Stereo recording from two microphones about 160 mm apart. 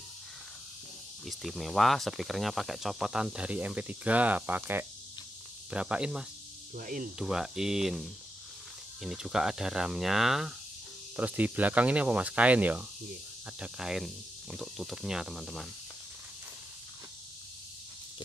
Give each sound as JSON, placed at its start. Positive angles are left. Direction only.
{"t": 1.2, "sound": "speech", "side_deg": 0}
{"t": 6.7, "sound": "speech", "side_deg": -55}
{"t": 7.2, "sound": "speech", "side_deg": -5}